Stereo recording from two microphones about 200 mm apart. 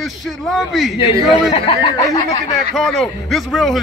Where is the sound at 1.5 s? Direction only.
25° left (ahead or behind).